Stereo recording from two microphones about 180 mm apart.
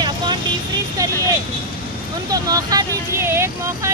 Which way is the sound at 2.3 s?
20° right (ahead or behind).